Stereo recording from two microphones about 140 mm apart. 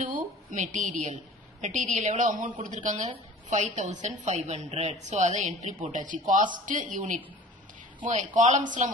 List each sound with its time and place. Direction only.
0.0 s a woman's voice: 70° right (ahead or behind)
4.2 s a woman's voice: 50° right (ahead or behind)
5.9 s a woman's voice: 65° right (ahead or behind)